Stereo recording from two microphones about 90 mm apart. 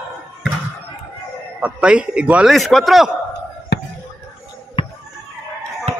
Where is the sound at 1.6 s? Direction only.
10° right (ahead or behind).